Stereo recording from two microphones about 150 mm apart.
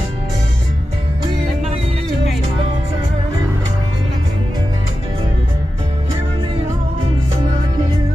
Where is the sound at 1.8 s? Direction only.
40° right (ahead or behind).